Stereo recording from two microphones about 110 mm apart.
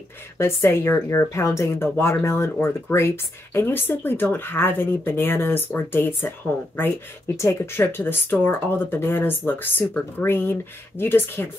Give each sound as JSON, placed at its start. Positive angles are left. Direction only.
{"t": 0.4, "sound": "speech", "side_deg": 25}